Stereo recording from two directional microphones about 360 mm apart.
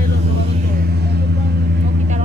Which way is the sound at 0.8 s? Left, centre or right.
Right.